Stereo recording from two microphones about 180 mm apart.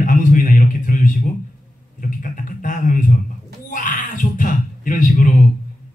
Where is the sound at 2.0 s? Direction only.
50° left (ahead or behind).